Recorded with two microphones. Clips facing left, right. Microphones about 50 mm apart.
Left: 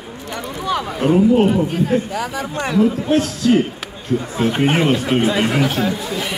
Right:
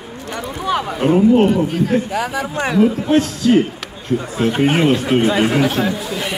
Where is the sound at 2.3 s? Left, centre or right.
Centre.